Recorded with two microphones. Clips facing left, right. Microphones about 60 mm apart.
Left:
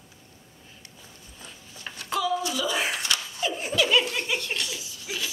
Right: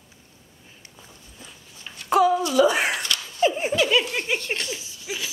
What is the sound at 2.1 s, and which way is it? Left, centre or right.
Speech, right.